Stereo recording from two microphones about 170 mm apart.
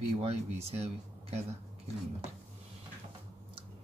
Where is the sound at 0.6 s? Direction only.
40° right (ahead or behind).